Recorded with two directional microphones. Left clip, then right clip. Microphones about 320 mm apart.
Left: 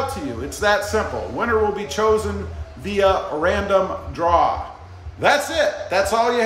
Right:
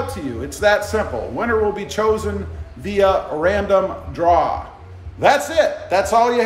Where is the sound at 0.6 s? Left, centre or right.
Centre.